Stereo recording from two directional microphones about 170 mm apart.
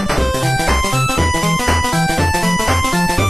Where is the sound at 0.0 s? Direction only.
Centre (ahead or behind).